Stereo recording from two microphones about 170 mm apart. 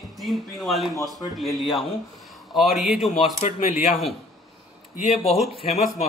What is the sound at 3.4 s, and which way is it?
Speech, 45° left (ahead or behind).